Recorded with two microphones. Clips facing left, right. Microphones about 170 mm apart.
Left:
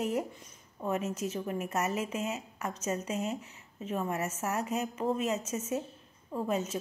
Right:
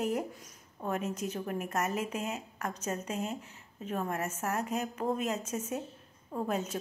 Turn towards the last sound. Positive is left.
turn(degrees=0)  # may be behind; listen again after turning